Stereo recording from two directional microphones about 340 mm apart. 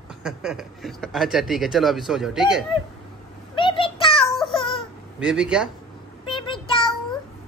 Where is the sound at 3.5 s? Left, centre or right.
Centre.